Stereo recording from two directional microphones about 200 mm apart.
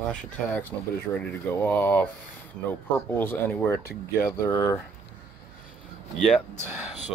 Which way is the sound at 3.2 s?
10° left (ahead or behind).